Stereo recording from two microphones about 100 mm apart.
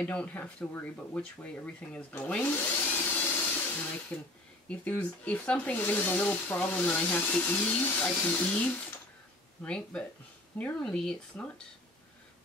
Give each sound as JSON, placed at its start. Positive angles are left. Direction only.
{"t": 0.0, "sound": "speech", "side_deg": 15}